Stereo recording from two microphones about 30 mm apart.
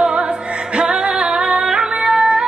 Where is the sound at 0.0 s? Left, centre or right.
Right.